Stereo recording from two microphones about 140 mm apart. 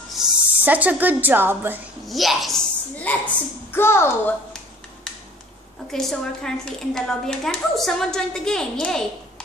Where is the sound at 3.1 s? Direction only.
10° left (ahead or behind).